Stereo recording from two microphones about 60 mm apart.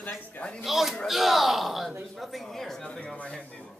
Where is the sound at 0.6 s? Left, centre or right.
Centre.